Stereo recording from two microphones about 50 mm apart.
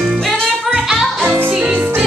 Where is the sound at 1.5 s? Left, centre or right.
Right.